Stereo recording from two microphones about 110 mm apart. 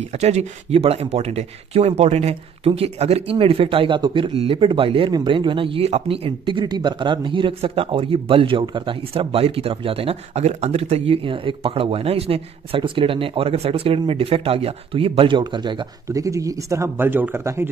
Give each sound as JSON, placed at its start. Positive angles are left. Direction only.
{"t": 0.2, "sound": "speech", "side_deg": -80}
{"t": 5.1, "sound": "speech", "side_deg": -45}
{"t": 16.1, "sound": "speech", "side_deg": -30}